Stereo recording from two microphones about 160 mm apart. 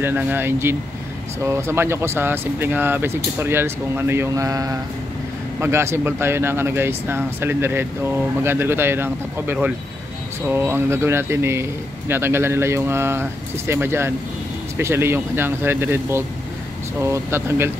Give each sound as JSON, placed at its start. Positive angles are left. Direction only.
{"t": 0.0, "sound": "speech", "side_deg": -10}